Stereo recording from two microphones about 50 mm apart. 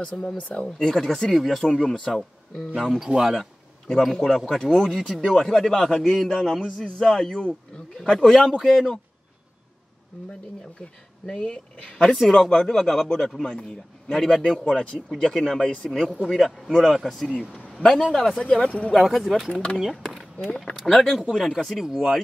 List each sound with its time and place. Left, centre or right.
0.0 s speech: left
0.7 s a man's voice: centre
3.3 s a man's voice: centre
11.2 s a man's voice: centre
16.3 s a man's voice: centre
19.5 s speech: centre
20.0 s speech: centre